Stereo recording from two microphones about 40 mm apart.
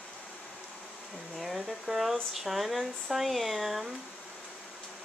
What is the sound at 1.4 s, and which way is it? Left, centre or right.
Speech, centre.